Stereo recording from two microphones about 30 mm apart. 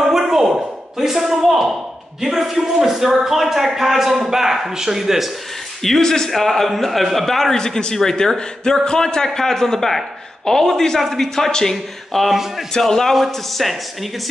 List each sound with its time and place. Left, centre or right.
0.0 s a sound: centre
2.2 s speech: centre
5.8 s speech: centre
6.3 s a man's voice: centre
7.5 s speech: left
11.7 s a man's voice: centre
12.7 s speech: centre
13.1 s a man's voice: centre